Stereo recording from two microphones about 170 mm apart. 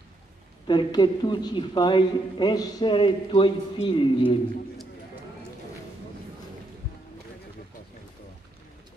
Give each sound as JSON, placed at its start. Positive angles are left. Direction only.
{"t": 0.7, "sound": "a man's voice", "side_deg": 25}